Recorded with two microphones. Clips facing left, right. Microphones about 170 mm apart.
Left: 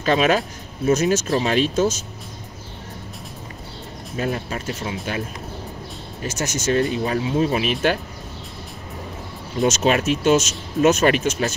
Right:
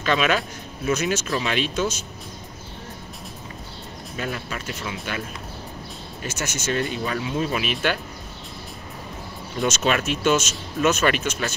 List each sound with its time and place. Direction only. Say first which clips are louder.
0.0 s speech: left 4 dB; 35° left (ahead or behind)
4.2 s speech: left 5 dB; 35° left (ahead or behind)
6.2 s speech: left 5 dB; 40° left (ahead or behind)
9.6 s speech: left 4 dB; 40° left (ahead or behind)